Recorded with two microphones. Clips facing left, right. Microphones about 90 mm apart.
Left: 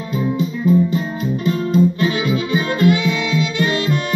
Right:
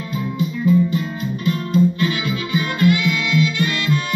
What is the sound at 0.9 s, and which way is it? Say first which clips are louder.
Music: left 3 dB; 30° left (ahead or behind).